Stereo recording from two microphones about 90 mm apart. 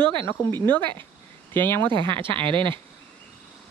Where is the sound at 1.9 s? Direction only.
70° right (ahead or behind).